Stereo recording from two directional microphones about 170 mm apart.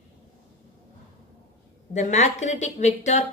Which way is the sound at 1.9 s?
45° left (ahead or behind).